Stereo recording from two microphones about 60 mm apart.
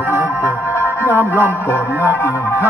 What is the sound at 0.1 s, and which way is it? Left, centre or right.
Music, right.